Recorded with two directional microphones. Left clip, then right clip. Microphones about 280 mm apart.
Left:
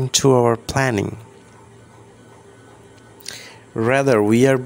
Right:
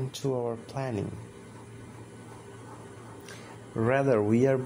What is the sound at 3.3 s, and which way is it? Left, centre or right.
Speech, left.